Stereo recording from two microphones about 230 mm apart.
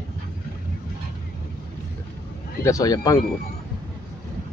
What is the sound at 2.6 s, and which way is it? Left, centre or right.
Speech, centre.